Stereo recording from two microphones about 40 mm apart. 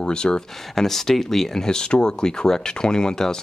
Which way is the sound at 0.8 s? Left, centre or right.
Centre.